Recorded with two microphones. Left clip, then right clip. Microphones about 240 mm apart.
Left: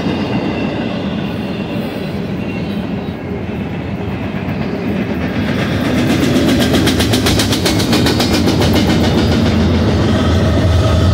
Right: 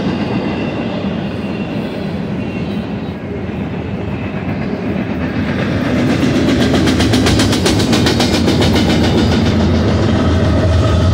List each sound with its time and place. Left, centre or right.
5.6 s vehicle: left; by 9.2 s centre